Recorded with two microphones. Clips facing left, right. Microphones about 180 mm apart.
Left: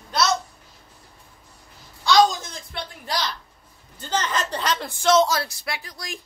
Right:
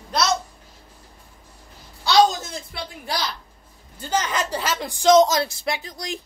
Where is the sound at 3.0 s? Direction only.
10° right (ahead or behind).